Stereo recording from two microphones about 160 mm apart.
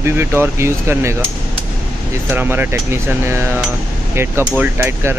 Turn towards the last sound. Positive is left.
turn(degrees=-15)  # may be behind; listen again after turning